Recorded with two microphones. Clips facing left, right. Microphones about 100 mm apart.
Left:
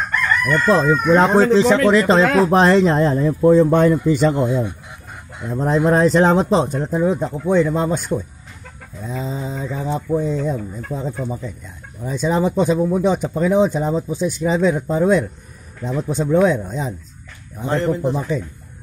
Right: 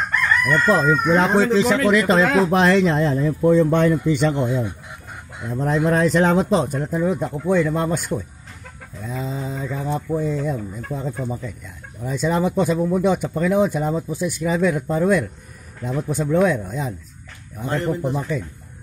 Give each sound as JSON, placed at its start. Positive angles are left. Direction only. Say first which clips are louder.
{"t": 0.7, "sound": "speech", "louder": "left 3 dB", "side_deg": 25}
{"t": 1.1, "sound": "speech", "louder": "left 5 dB", "side_deg": 40}